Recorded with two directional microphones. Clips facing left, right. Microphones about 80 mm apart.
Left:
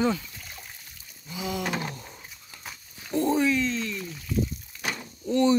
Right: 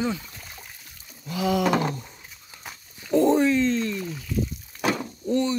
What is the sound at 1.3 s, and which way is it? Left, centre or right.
Speech, right.